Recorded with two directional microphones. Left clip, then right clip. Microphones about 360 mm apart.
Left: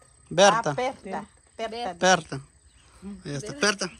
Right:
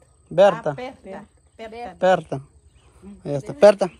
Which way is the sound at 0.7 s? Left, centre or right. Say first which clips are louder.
Left 5 dB; centre.